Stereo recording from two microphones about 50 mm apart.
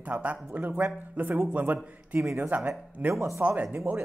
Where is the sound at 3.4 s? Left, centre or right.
Right.